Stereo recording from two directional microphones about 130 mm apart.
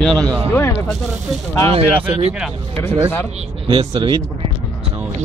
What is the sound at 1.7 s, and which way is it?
Speech, 50° right (ahead or behind).